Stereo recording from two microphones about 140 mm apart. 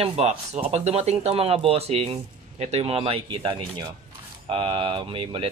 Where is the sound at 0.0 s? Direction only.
45° right (ahead or behind).